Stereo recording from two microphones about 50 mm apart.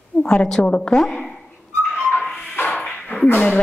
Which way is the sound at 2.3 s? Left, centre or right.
Left.